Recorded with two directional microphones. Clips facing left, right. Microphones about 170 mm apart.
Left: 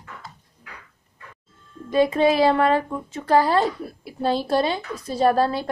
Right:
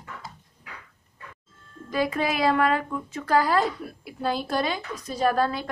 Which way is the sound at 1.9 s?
25° left (ahead or behind).